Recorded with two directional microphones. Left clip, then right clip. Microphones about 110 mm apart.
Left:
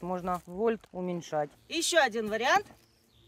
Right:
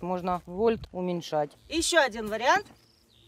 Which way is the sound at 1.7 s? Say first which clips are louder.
Right 2 dB; 20° right (ahead or behind).